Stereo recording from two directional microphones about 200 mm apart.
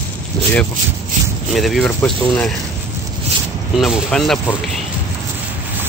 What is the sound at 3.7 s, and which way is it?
Speech, centre (ahead or behind).